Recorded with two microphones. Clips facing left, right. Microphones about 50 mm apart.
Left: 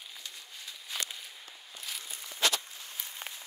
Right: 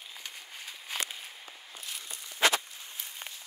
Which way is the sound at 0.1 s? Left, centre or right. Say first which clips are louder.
Right 2 dB; right.